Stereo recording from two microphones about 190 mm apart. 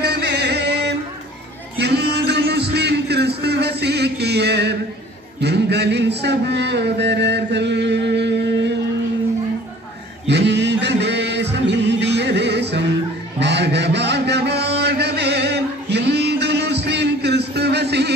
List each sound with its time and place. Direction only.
0.0 s music: 60° right (ahead or behind)
5.4 s a man's voice: 60° right (ahead or behind)
10.2 s mantra: 65° right (ahead or behind)
11.5 s music: 65° right (ahead or behind)
13.4 s a sound: 65° right (ahead or behind)